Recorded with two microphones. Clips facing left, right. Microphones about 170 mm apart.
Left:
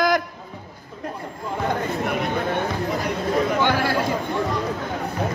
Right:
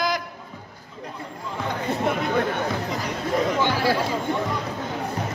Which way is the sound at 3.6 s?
55° left (ahead or behind).